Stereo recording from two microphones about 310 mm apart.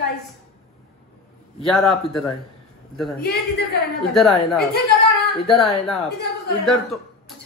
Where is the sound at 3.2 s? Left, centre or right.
Left.